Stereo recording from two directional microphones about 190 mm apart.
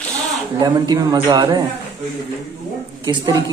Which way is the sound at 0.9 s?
20° right (ahead or behind).